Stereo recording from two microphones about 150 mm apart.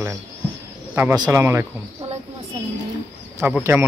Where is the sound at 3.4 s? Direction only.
15° right (ahead or behind).